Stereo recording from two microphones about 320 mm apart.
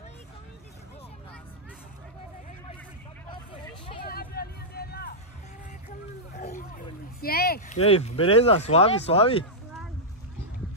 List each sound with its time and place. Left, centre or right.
3.6 s hubbub: centre
4.0 s vehicle: left
6.3 s speech: left